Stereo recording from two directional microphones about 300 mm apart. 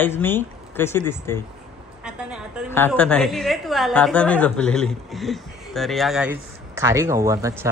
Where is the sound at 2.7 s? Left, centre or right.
Centre.